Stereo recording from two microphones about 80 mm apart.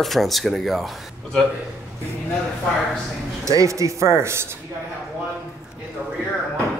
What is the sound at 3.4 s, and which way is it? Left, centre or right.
Speech, right.